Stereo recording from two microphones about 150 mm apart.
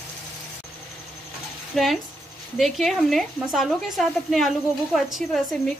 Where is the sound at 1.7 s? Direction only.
Centre (ahead or behind).